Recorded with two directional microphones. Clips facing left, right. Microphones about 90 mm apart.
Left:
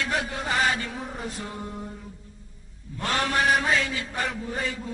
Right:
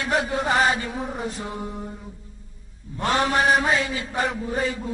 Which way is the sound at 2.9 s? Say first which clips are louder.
Right 4 dB; 25° right (ahead or behind).